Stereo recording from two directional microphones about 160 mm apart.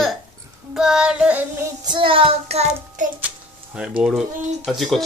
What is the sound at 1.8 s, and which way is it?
Speech, 30° right (ahead or behind).